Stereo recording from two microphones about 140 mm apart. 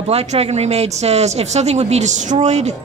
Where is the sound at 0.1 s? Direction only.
50° right (ahead or behind).